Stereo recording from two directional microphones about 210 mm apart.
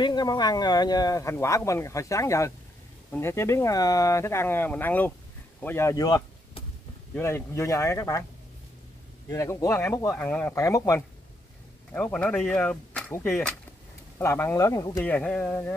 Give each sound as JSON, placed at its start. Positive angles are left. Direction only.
{"t": 0.0, "sound": "speech", "side_deg": 20}
{"t": 9.3, "sound": "speech", "side_deg": 15}